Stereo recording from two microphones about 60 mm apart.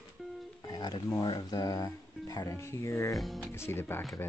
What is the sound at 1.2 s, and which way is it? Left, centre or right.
Speech, left.